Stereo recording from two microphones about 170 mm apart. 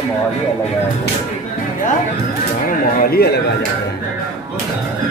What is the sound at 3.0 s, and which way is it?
Speech, 65° left (ahead or behind).